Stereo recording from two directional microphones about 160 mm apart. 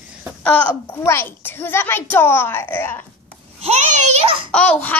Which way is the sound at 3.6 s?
45° right (ahead or behind).